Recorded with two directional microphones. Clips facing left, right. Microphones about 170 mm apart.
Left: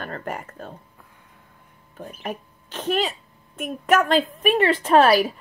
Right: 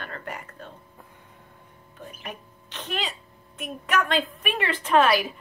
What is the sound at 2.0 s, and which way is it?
A woman's voice, 40° left (ahead or behind).